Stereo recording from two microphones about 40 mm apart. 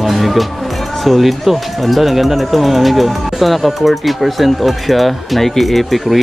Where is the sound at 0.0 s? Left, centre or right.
Centre.